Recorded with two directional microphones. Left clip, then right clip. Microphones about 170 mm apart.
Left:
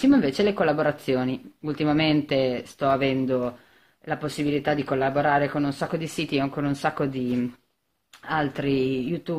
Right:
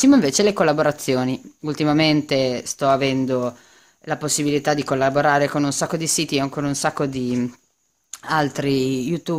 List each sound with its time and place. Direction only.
0.0 s speech: 45° right (ahead or behind)